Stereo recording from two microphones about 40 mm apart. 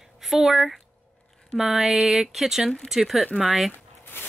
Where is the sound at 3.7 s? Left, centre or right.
Left.